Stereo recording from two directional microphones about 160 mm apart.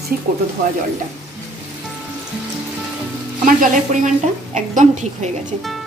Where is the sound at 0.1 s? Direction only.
60° right (ahead or behind).